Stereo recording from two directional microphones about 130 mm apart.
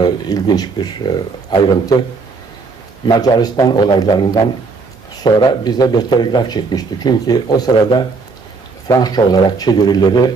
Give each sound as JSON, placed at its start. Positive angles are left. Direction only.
{"t": 0.0, "sound": "speech", "side_deg": 30}
{"t": 3.1, "sound": "speech", "side_deg": 30}